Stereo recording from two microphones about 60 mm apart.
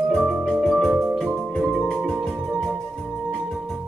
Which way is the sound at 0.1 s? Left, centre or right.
Centre.